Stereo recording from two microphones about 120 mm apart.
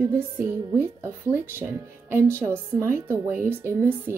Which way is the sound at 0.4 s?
20° right (ahead or behind).